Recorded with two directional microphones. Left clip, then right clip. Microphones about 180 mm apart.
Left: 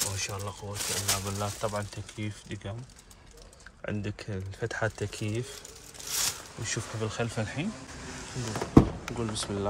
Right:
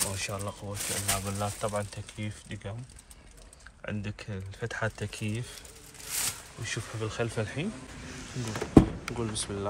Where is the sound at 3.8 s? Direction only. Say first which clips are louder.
Left 2 dB; 30° left (ahead or behind).